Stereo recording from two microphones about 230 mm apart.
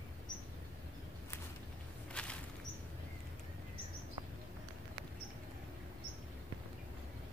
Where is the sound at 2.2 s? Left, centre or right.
Centre.